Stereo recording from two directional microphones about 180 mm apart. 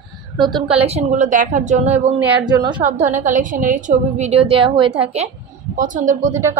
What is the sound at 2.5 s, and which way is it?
Speech, 25° right (ahead or behind).